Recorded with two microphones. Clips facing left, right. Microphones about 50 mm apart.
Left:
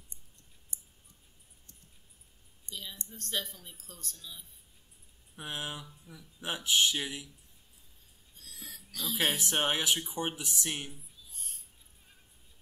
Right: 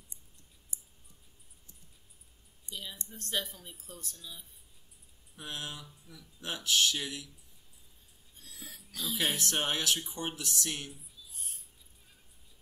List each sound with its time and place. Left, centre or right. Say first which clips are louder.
0.7 s a sound: right 1 dB; left
2.7 s a sound: right 1 dB; centre
3.1 s speech: right 1 dB; centre
5.3 s speech: left 2 dB; centre
8.4 s speech: even; centre
9.4 s speech: left 2 dB; centre